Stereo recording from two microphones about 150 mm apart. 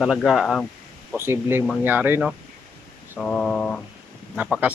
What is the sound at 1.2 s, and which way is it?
Speech, 15° right (ahead or behind).